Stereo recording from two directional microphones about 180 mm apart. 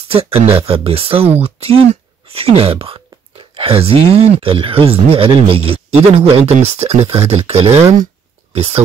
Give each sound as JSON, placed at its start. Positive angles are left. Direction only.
{"t": 0.1, "sound": "speech", "side_deg": -30}